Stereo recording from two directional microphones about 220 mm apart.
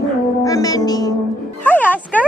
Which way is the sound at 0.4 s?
15° left (ahead or behind).